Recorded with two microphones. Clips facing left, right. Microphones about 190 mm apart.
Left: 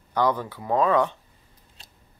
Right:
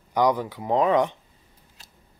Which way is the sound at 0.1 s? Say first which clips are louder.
Right 2 dB; 15° right (ahead or behind).